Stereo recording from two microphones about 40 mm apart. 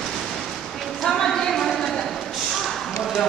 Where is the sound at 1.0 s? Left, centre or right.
Centre.